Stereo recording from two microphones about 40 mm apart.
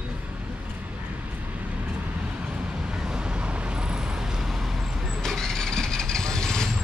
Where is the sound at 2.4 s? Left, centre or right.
Right; by 5.1 s centre.